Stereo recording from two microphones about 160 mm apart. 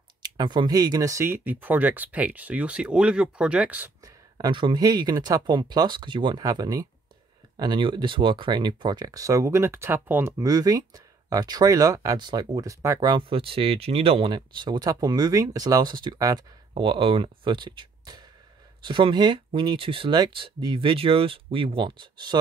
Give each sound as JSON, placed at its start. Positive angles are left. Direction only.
{"t": 0.2, "sound": "speech", "side_deg": -30}
{"t": 4.0, "sound": "speech", "side_deg": -25}